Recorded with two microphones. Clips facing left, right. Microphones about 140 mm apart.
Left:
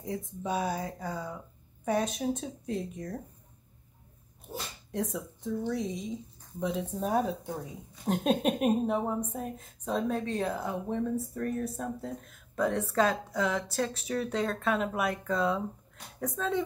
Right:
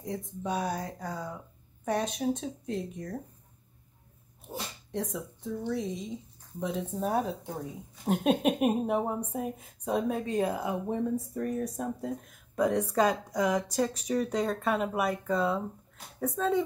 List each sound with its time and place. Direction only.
0.0 s speech: centre (ahead or behind)
4.9 s speech: centre (ahead or behind)